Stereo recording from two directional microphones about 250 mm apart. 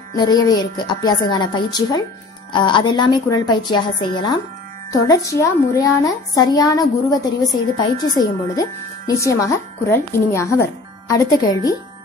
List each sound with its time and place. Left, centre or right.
0.1 s speech: centre